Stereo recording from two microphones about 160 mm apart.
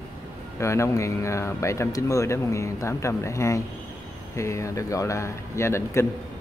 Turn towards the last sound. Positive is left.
turn(degrees=15)  # may be behind; listen again after turning